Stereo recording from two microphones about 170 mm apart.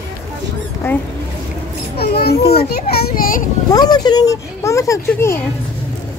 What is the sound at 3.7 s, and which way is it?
Speech, 25° left (ahead or behind).